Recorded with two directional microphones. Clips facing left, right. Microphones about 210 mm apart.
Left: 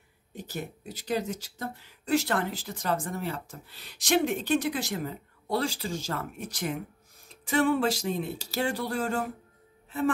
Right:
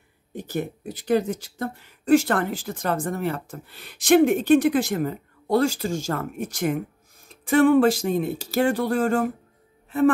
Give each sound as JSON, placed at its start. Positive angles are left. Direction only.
{"t": 0.3, "sound": "speech", "side_deg": -55}